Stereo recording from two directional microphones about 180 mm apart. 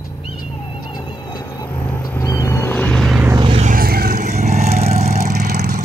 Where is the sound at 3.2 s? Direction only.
25° right (ahead or behind).